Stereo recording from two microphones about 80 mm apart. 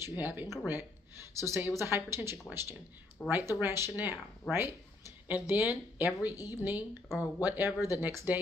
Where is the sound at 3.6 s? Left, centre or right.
Right.